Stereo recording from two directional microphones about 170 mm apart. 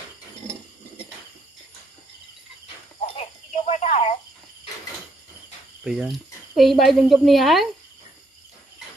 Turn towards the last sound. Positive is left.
turn(degrees=0)  # may be behind; listen again after turning